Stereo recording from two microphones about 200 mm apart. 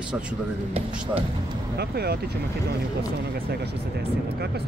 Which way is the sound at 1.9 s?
55° right (ahead or behind).